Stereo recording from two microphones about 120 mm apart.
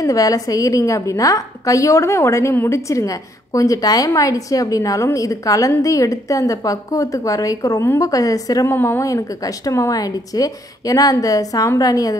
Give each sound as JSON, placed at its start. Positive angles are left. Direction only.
{"t": 0.0, "sound": "a woman's voice", "side_deg": 30}